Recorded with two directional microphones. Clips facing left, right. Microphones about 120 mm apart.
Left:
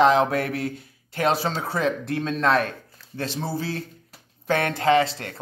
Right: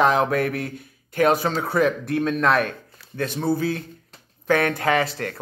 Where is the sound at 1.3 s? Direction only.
50° right (ahead or behind).